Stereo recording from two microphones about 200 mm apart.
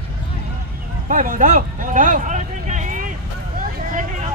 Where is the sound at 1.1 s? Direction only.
40° right (ahead or behind).